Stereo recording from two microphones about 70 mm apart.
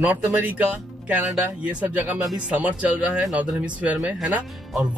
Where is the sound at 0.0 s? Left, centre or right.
Right.